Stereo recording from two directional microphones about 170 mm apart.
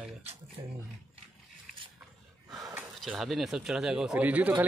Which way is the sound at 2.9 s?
Centre (ahead or behind).